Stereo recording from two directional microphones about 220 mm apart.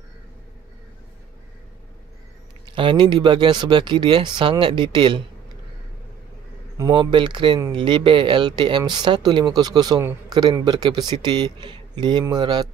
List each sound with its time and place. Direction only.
2.7 s a man's voice: 20° right (ahead or behind)
6.8 s a man's voice: 20° right (ahead or behind)